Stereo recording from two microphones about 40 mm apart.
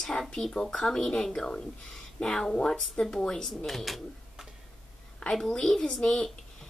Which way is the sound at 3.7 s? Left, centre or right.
Centre.